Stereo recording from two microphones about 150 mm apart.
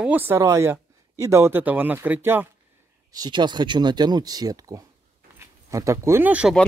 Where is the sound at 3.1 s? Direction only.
25° right (ahead or behind); by 6.5 s 10° right (ahead or behind).